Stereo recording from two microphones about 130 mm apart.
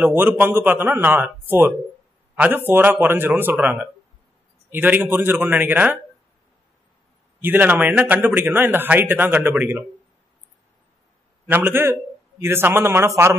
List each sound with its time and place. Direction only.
0.0 s a man's voice: 15° right (ahead or behind)
7.4 s a man's voice: 15° right (ahead or behind)
11.4 s a man's voice: 15° right (ahead or behind)